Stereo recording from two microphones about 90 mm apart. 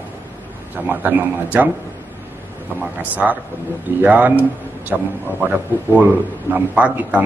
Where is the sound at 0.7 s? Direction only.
20° right (ahead or behind).